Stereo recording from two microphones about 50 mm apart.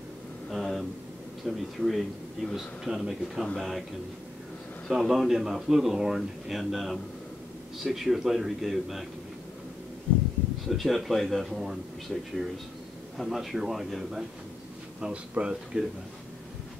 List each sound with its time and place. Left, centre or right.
0.5 s a sound: centre
1.4 s a man's voice: centre
4.8 s a man's voice: centre
10.1 s a sound: centre
10.6 s a man's voice: centre
15.0 s speech: centre